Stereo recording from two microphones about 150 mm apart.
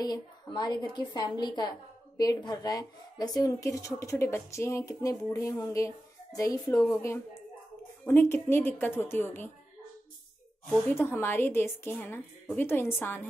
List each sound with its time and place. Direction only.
0.0 s speech: 30° left (ahead or behind)
10.7 s speech: 15° left (ahead or behind)